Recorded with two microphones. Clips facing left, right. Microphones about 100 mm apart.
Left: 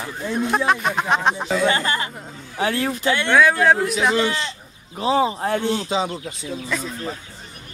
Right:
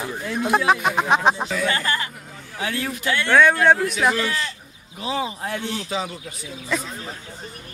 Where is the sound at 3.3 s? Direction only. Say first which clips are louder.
Right 1 dB; 5° left (ahead or behind).